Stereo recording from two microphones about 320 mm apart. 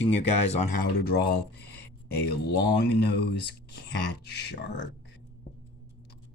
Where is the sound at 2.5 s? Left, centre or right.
Left.